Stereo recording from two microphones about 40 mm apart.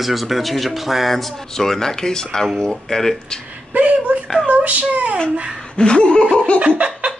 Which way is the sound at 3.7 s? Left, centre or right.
Right.